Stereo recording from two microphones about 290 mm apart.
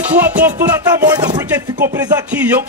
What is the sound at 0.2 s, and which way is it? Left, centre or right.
Music, centre.